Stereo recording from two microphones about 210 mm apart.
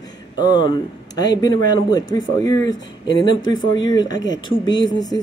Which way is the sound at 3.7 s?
20° left (ahead or behind).